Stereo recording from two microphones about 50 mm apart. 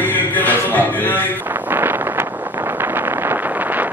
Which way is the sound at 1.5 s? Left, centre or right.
Right.